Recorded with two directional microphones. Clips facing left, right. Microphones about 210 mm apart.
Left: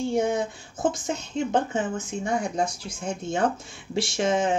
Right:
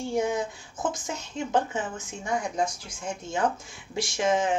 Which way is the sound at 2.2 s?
30° left (ahead or behind).